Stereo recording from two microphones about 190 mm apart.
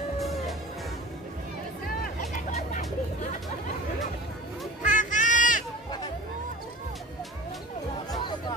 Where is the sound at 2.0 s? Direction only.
40° left (ahead or behind).